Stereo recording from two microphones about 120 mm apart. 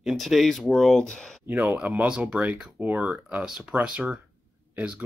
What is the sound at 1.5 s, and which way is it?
Speech, 15° right (ahead or behind).